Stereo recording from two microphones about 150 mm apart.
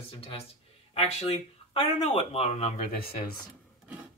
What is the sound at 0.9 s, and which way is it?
Speech, 40° left (ahead or behind).